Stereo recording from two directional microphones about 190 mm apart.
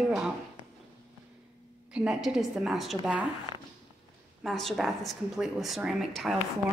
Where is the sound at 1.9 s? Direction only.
5° right (ahead or behind).